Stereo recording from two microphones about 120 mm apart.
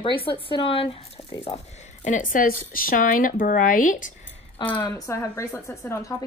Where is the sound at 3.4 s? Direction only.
90° left.